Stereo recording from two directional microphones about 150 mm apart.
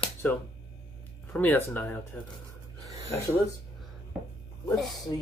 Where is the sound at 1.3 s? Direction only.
10° left (ahead or behind).